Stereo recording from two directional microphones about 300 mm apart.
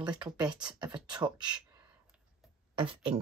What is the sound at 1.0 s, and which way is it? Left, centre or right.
Speech, centre.